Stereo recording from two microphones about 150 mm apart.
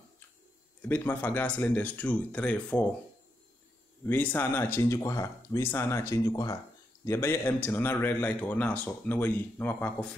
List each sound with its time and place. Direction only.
0.8 s a man's voice: 15° left (ahead or behind)
4.0 s a man's voice: 15° left (ahead or behind)